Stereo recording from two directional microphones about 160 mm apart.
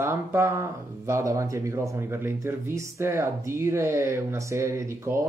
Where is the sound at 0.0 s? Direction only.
15° right (ahead or behind).